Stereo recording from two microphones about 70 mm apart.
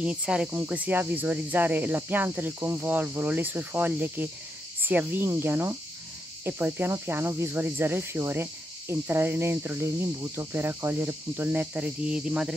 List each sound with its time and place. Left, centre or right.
0.0 s speech: centre
0.5 s cricket: right